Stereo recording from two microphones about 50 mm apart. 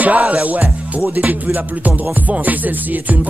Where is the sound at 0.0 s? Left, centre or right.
Right.